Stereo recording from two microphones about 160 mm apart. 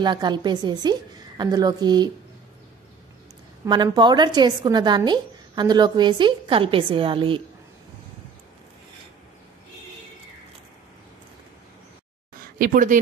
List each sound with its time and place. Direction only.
0.0 s a woman's voice: 25° right (ahead or behind)
3.6 s a woman's voice: 25° right (ahead or behind)
12.5 s a woman's voice: 55° right (ahead or behind)